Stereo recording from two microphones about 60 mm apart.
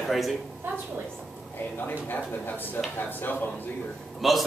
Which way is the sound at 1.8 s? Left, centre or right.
Left.